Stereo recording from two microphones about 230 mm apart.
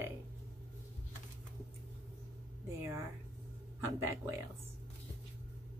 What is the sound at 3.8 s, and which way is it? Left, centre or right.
Speech, centre.